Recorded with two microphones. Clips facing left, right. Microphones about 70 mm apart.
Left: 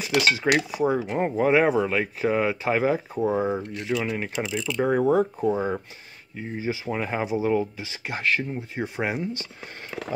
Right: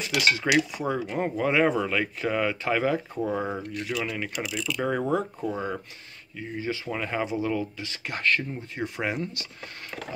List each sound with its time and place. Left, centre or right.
0.6 s speech: centre